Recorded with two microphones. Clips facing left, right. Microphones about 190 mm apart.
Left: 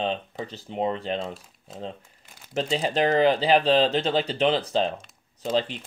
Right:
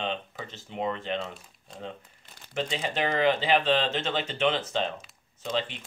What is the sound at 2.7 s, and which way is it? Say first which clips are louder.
Speech: left 7 dB; 35° left (ahead or behind).